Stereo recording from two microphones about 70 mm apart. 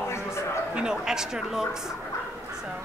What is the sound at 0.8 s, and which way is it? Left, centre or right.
Speech, centre.